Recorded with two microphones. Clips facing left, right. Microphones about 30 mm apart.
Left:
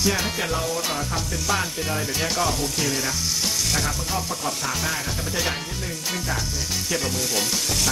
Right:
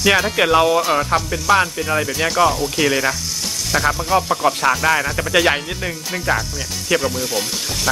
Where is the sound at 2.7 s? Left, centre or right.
Right.